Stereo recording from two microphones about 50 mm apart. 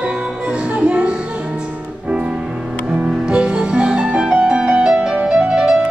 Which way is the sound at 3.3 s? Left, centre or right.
Right.